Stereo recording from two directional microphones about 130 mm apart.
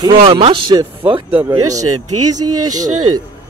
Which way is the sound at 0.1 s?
45° right (ahead or behind).